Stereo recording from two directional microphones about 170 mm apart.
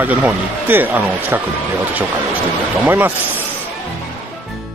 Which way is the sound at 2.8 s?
10° right (ahead or behind).